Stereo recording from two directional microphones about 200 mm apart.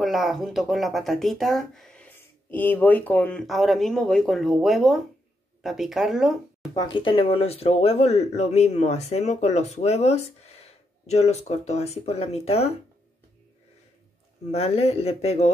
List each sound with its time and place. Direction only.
0.0 s speech: centre (ahead or behind)
6.7 s speech: 20° left (ahead or behind)
14.5 s speech: 30° left (ahead or behind)